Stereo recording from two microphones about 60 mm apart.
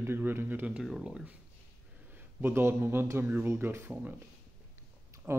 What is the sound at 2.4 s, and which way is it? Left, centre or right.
Speech, right.